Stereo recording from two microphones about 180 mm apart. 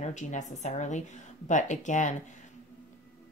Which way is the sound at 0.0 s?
40° left (ahead or behind).